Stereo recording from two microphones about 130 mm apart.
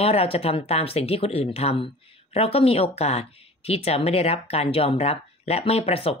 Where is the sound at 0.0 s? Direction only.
50° left (ahead or behind).